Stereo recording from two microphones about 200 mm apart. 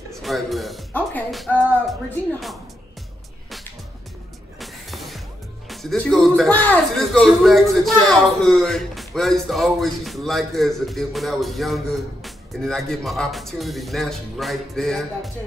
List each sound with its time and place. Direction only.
0.1 s music: centre (ahead or behind)
4.6 s music: centre (ahead or behind)
5.7 s speech: centre (ahead or behind)